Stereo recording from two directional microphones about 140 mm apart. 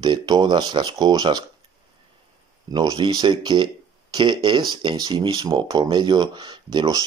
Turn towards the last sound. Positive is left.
turn(degrees=-30)  # may be behind; listen again after turning